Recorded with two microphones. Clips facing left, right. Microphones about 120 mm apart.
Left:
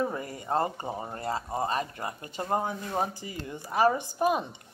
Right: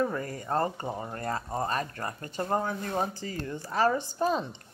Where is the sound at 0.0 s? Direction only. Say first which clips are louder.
Right 1 dB; 15° left (ahead or behind).